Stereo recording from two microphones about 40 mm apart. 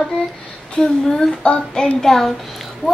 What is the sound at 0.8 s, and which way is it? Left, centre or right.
Speech, centre.